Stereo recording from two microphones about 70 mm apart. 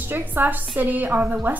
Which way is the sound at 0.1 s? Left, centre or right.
Right.